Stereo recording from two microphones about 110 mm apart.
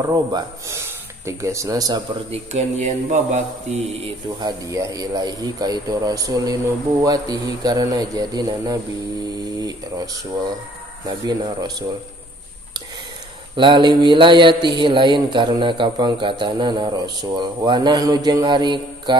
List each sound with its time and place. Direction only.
0.0 s speech: 35° right (ahead or behind)
2.3 s speech: 90° right
4.4 s speech: 35° right (ahead or behind)
13.6 s speech: 45° right (ahead or behind)